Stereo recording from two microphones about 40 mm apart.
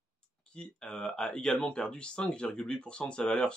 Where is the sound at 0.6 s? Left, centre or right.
Left.